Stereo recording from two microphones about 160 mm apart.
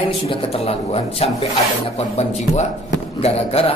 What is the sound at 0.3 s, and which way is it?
A man's voice, 35° left (ahead or behind).